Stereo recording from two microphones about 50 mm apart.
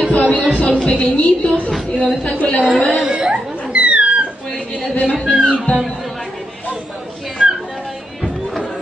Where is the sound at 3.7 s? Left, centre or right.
Right.